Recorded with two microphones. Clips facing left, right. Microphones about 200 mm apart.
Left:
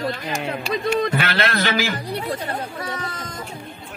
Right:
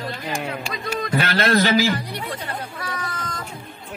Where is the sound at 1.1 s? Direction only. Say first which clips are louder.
Right 3 dB; 40° right (ahead or behind).